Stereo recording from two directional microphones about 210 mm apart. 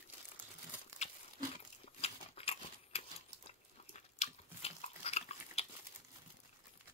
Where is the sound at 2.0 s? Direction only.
30° left (ahead or behind).